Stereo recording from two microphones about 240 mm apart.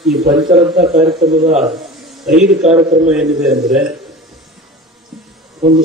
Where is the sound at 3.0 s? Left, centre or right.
Centre.